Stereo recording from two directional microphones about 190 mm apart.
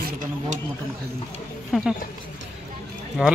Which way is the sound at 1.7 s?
5° right (ahead or behind).